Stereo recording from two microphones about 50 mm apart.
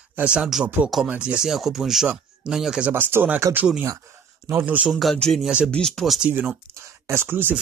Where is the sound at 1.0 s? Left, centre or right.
Right.